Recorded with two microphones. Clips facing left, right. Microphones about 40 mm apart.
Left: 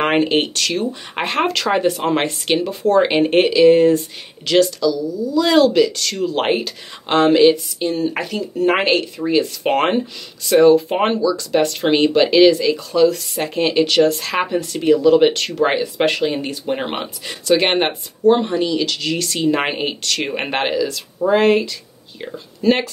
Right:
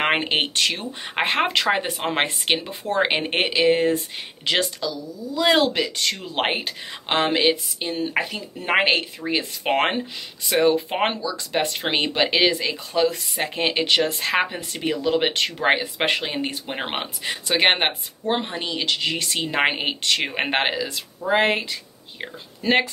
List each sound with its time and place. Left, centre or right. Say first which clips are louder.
0.1 s speech: left 5 dB; right